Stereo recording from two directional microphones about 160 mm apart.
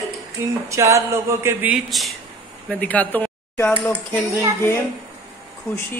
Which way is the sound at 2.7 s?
10° left (ahead or behind).